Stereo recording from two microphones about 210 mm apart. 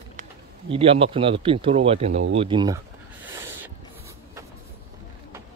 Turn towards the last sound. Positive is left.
turn(degrees=-10)  # may be behind; listen again after turning